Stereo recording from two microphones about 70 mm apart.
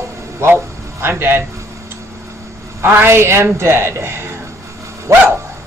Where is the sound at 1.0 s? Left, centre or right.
Right.